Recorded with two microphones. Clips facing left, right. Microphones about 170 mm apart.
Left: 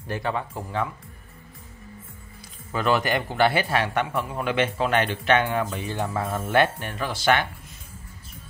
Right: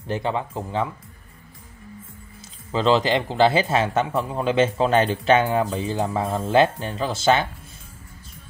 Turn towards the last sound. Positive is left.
turn(degrees=-25)  # may be behind; listen again after turning